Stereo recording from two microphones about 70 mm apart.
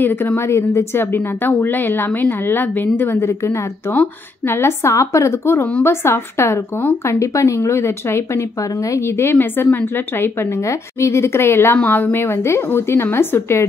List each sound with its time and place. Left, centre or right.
0.0 s a woman's voice: left
3.9 s a woman's voice: left
4.6 s a woman's voice: left